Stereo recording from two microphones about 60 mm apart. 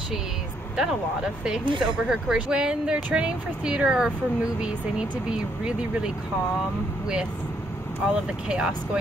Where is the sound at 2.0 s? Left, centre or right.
Centre.